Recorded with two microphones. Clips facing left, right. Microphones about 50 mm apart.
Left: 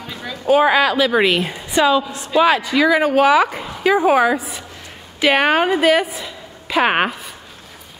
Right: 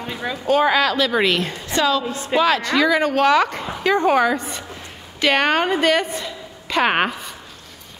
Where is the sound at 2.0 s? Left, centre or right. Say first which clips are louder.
Even; right.